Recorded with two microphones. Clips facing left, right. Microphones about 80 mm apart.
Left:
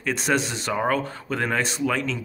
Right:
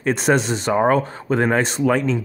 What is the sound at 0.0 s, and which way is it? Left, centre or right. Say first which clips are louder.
Speech: right 6 dB; right.